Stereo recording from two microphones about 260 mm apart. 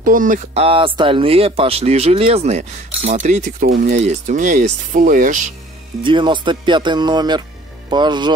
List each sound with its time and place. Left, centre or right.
0.0 s speech: right
6.0 s speech: centre